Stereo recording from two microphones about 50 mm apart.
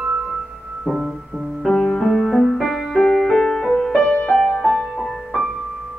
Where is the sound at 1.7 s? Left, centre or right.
Centre.